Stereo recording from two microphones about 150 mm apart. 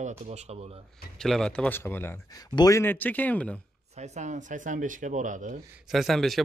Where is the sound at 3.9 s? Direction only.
50° right (ahead or behind).